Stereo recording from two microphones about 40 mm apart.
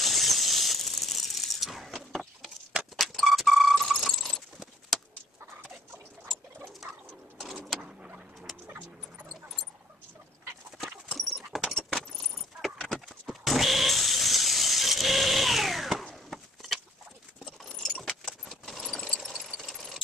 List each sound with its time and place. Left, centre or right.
0.0 s a sound: centre
3.0 s keys jangling: centre
7.8 s vehicle: right
11.1 s horse: centre
11.7 s keys jangling: centre
12.4 s vehicle: centre
16.3 s a sound: centre
18.2 s keys jangling: centre
19.1 s a sound: centre